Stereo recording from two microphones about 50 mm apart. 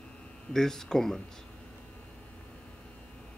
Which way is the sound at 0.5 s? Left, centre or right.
Centre.